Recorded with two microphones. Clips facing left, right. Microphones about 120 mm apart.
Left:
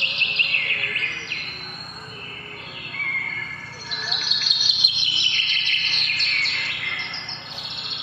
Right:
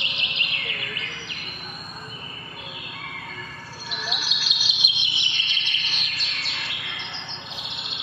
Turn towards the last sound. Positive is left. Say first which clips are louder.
# right 1 dB
turn(degrees=0)  # may be behind; listen again after turning